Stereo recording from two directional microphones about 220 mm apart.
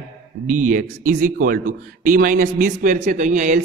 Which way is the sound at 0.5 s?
35° right (ahead or behind).